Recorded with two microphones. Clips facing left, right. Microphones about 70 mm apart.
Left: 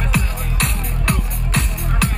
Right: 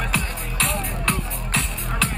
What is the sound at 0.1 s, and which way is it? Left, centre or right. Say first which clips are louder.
Music: left 3 dB; centre.